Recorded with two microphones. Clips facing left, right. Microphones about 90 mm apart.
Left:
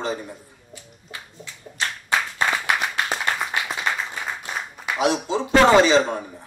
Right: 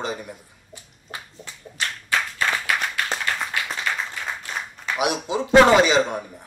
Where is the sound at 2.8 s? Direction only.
10° left (ahead or behind).